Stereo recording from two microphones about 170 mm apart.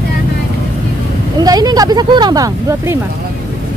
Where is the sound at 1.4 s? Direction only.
25° right (ahead or behind).